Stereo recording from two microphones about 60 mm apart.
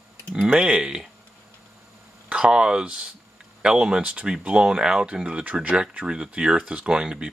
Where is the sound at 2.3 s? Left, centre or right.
Centre.